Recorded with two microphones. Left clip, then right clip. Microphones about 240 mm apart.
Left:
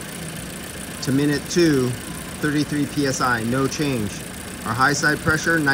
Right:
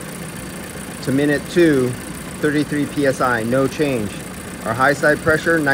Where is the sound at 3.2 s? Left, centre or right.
Centre.